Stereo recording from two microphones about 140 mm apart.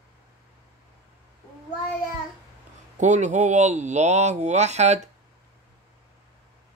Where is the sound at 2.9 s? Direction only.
60° right (ahead or behind).